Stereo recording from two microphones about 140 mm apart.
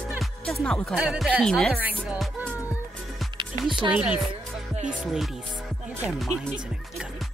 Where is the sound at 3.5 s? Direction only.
25° left (ahead or behind).